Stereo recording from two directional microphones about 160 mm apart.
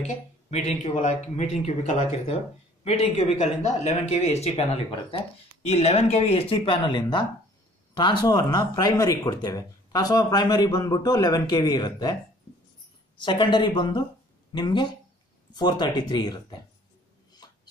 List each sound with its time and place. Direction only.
0.0 s speech: 45° left (ahead or behind)
5.7 s speech: 40° left (ahead or behind); by 12.2 s 25° left (ahead or behind)
13.2 s speech: 30° left (ahead or behind)
17.4 s a sound: 25° left (ahead or behind)